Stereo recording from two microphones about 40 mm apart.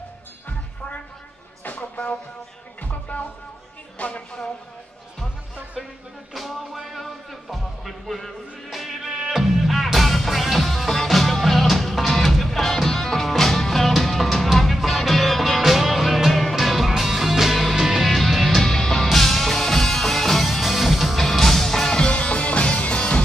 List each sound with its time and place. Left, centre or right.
1.8 s music: left
4.0 s speech: left
6.3 s music: centre
18.0 s music: centre; by 23.2 s left